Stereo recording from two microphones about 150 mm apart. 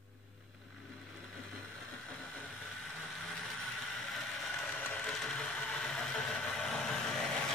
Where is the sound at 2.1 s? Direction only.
5° left (ahead or behind).